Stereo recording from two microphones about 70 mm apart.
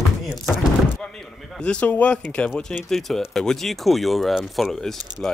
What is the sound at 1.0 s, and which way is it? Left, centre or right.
Speech, centre.